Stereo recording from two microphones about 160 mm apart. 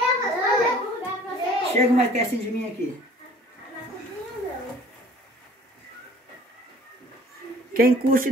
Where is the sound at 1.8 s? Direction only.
50° right (ahead or behind).